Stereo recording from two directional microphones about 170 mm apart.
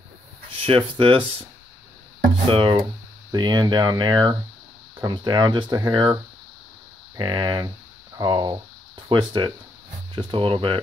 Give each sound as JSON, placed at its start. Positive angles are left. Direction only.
{"t": 0.7, "sound": "speech", "side_deg": -35}
{"t": 2.4, "sound": "speech", "side_deg": -30}
{"t": 7.2, "sound": "speech", "side_deg": -25}